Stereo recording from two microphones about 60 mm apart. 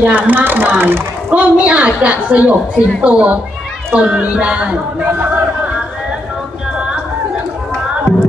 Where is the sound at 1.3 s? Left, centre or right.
Right.